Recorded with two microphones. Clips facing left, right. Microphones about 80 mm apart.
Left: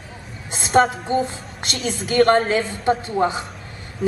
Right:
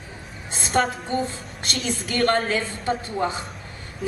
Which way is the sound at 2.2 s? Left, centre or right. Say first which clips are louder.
Left 4 dB; left.